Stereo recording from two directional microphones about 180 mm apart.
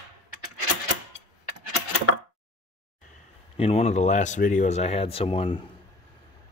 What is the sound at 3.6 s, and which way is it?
Speech, 35° left (ahead or behind).